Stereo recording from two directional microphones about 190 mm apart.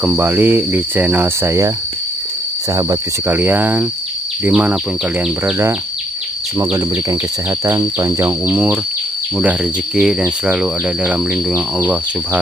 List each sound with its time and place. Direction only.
0.0 s cricket: 10° right (ahead or behind)
2.7 s cricket: 20° right (ahead or behind)